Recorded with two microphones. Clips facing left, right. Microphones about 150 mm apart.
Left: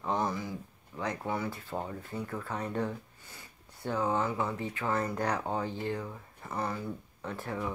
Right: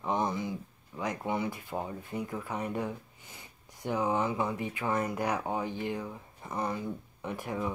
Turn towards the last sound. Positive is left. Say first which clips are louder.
# right 2 dB
turn(degrees=-15)  # may be behind; listen again after turning